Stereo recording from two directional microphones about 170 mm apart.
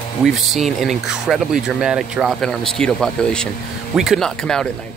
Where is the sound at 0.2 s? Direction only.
Centre (ahead or behind).